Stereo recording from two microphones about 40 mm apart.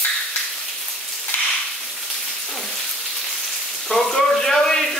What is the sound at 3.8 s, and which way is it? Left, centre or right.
Frying, centre.